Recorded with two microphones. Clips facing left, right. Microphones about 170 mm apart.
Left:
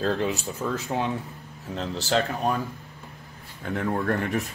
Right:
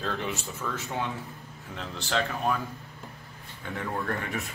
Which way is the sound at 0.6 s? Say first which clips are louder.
Left 6 dB; 35° left (ahead or behind).